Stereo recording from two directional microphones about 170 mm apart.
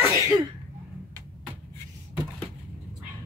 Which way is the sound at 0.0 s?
15° right (ahead or behind).